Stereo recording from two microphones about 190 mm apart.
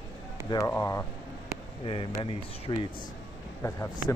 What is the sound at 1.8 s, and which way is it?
Speech, 25° left (ahead or behind).